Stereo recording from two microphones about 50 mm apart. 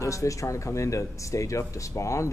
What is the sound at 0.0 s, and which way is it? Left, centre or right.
Speech, left.